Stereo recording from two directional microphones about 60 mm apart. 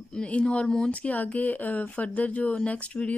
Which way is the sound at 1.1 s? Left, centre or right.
Left.